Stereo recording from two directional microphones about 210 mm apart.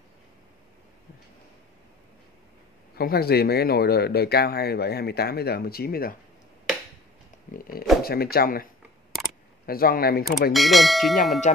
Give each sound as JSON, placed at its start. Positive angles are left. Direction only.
{"t": 3.0, "sound": "speech", "side_deg": 45}
{"t": 7.5, "sound": "speech", "side_deg": 45}
{"t": 9.7, "sound": "speech", "side_deg": 45}
{"t": 10.5, "sound": "speech", "side_deg": 0}
{"t": 11.5, "sound": "speech", "side_deg": 35}